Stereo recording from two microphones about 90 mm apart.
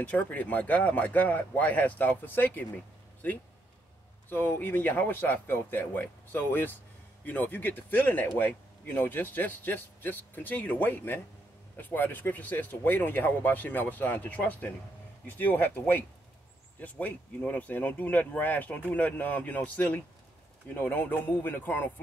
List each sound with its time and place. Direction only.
0.0 s speech: 15° left (ahead or behind)
4.3 s speech: 20° left (ahead or behind)